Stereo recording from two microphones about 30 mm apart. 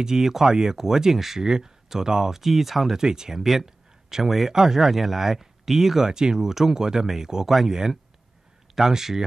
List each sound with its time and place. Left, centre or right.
0.0 s speech: centre
2.4 s speech: centre
3.0 s speech: right
3.3 s a sound: centre
4.5 s speech: centre
6.0 s speech: right
7.4 s speech: centre
8.7 s speech: centre